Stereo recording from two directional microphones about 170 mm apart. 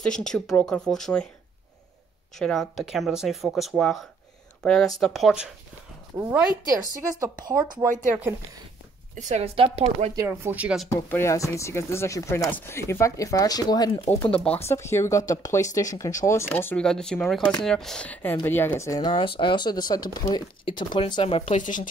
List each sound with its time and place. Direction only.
0.0 s speech: 5° left (ahead or behind)
2.3 s speech: centre (ahead or behind)
6.9 s speech: 20° right (ahead or behind)
8.1 s speech: 10° right (ahead or behind)
9.1 s a woman's voice: 45° right (ahead or behind)
10.1 s speech: 15° right (ahead or behind)
10.9 s speech: 15° left (ahead or behind)
14.4 s speech: 10° left (ahead or behind); by 21.5 s 30° left (ahead or behind)
21.5 s speech: 50° left (ahead or behind)